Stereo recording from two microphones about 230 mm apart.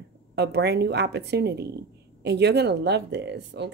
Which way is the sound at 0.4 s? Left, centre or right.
Right.